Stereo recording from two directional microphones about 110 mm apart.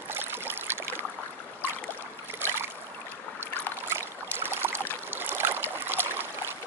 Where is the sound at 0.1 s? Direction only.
20° right (ahead or behind).